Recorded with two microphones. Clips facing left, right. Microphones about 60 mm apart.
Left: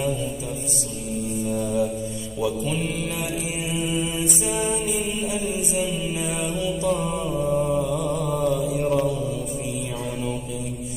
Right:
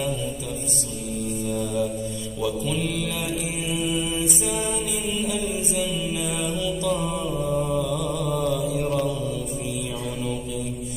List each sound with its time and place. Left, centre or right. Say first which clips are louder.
1.4 s music: left 2 dB; centre
2.6 s mantra: even; left
4.5 s mantra: left 2 dB; left
6.2 s mantra: left 1 dB; left
6.9 s mantra: left 2 dB; centre
7.8 s mantra: left 1 dB; left
8.8 s mantra: left 2 dB; centre